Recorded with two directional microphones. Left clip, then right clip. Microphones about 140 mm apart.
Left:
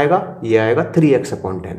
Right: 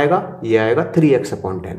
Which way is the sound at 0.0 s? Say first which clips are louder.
Left 1 dB; 10° left (ahead or behind).